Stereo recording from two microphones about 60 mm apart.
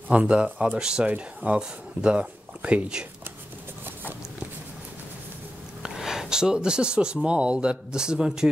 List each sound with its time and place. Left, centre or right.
0.1 s speech: centre
5.8 s speech: centre